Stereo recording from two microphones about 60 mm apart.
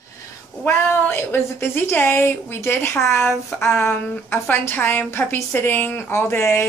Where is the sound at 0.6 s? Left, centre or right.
Left.